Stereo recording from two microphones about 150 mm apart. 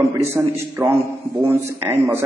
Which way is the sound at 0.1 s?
15° right (ahead or behind).